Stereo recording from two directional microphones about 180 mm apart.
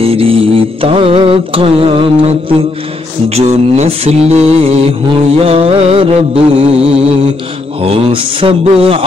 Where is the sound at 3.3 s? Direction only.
35° right (ahead or behind).